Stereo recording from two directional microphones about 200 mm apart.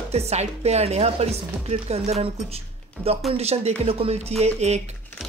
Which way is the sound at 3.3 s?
30° right (ahead or behind).